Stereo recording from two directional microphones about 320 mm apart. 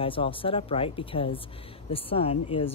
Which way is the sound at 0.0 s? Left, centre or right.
Centre.